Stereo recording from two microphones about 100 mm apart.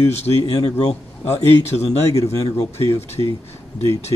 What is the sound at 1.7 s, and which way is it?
Speech, 90° left.